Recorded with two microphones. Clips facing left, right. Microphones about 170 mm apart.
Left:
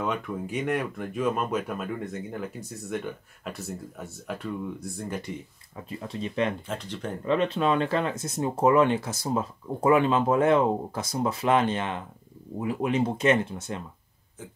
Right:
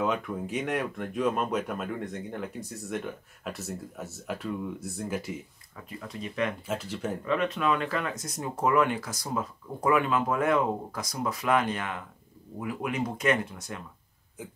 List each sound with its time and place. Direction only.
0.0 s speech: centre (ahead or behind)
5.9 s speech: 25° left (ahead or behind)
6.7 s speech: 5° right (ahead or behind)
7.2 s speech: 30° left (ahead or behind)